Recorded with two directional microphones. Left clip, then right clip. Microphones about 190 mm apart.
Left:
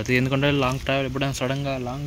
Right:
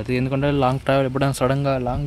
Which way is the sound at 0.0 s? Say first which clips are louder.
Left 1 dB; 10° right (ahead or behind).